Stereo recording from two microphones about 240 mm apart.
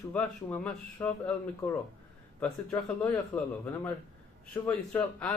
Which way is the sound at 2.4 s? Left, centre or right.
Centre.